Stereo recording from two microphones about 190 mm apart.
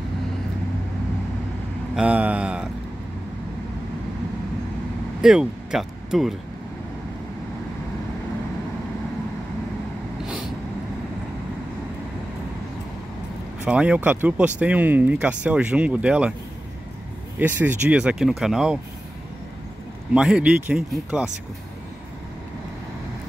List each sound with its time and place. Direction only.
2.0 s a sound: 5° right (ahead or behind)
5.2 s speech: 5° right (ahead or behind)
13.7 s speech: 5° right (ahead or behind)
17.4 s speech: 10° right (ahead or behind)
20.2 s speech: 5° right (ahead or behind)